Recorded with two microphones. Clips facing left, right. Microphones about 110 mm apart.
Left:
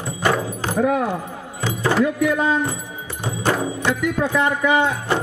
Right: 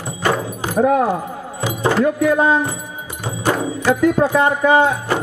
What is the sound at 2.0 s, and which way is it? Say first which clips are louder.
Speech: right 4 dB; 40° right (ahead or behind).